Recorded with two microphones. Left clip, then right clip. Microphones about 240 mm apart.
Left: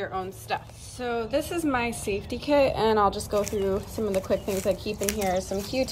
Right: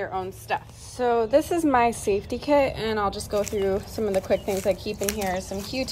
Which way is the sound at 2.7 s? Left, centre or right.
Centre.